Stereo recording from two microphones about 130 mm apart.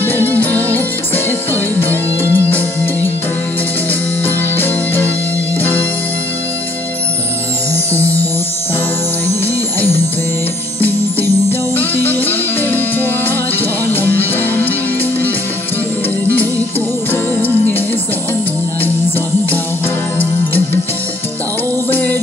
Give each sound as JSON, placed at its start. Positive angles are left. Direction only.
{"t": 0.0, "sound": "music", "side_deg": 15}
{"t": 4.2, "sound": "music", "side_deg": 15}
{"t": 7.7, "sound": "music", "side_deg": 15}
{"t": 9.8, "sound": "music", "side_deg": 20}
{"t": 11.7, "sound": "music", "side_deg": 15}
{"t": 18.8, "sound": "music", "side_deg": 15}
{"t": 21.9, "sound": "music", "side_deg": 15}